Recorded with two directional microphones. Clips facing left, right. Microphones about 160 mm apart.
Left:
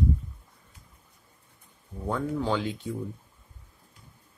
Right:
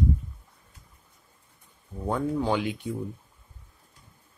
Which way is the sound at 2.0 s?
15° right (ahead or behind).